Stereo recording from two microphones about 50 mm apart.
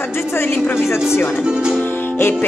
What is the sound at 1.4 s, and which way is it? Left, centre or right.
Speech, centre.